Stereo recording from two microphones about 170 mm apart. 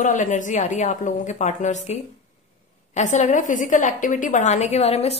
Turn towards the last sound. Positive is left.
turn(degrees=35)  # may be behind; listen again after turning